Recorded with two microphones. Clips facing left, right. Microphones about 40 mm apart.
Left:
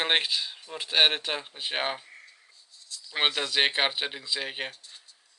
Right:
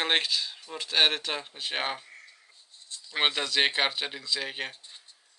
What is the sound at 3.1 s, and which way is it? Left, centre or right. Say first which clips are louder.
Speech: even; centre.